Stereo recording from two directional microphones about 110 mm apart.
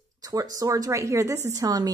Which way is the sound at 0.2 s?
35° right (ahead or behind).